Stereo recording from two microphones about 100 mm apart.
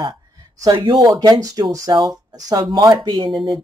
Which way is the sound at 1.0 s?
40° right (ahead or behind).